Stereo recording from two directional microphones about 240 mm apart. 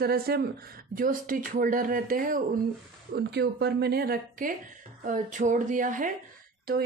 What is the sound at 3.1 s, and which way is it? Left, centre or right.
Speech, right.